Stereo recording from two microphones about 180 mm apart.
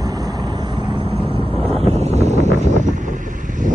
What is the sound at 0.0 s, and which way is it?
Vehicle, 20° right (ahead or behind).